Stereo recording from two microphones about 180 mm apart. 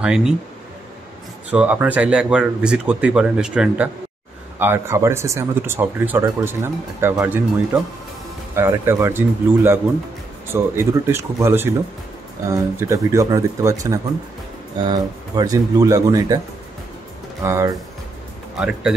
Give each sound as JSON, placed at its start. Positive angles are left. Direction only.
{"t": 0.0, "sound": "speech", "side_deg": -5}
{"t": 1.5, "sound": "speech", "side_deg": -10}
{"t": 17.4, "sound": "speech", "side_deg": -15}
{"t": 18.6, "sound": "speech", "side_deg": -5}